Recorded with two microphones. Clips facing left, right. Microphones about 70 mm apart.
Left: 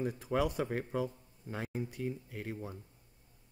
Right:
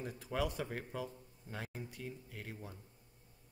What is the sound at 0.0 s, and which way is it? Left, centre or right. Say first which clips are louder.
Speech: left 6 dB; left.